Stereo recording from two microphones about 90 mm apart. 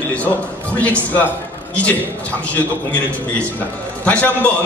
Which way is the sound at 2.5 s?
15° left (ahead or behind).